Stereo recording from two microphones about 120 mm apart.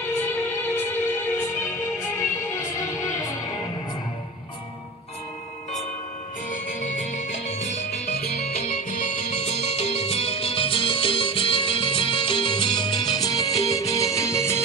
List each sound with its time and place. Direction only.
0.1 s music: 20° left (ahead or behind)
7.4 s music: 70° left (ahead or behind); by 14.6 s 25° left (ahead or behind)